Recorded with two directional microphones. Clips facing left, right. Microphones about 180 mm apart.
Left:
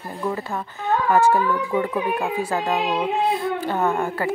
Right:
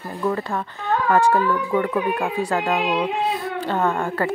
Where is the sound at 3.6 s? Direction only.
10° left (ahead or behind).